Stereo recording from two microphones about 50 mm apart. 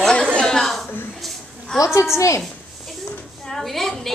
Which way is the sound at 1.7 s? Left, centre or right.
Left.